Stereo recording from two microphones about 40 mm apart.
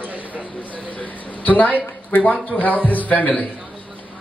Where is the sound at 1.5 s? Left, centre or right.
Left.